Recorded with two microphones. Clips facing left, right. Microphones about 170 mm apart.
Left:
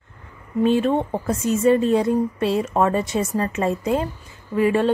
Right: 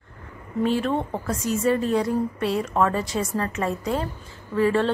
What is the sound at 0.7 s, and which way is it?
A woman's voice, 20° left (ahead or behind).